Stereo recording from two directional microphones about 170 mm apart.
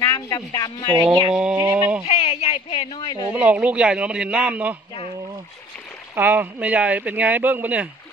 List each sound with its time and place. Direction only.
0.0 s speech: 20° left (ahead or behind)
0.9 s speech: 25° right (ahead or behind)
1.3 s speech: 5° right (ahead or behind)
1.6 s speech: 15° right (ahead or behind)
2.0 s a sound: 35° left (ahead or behind)
3.3 s speech: 10° right (ahead or behind)
6.1 s speech: 10° right (ahead or behind)